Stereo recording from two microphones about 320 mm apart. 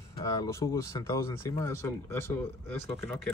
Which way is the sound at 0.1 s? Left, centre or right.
Centre.